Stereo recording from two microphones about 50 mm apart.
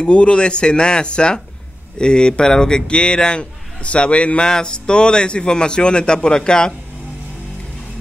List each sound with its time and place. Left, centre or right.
0.0 s a man's voice: left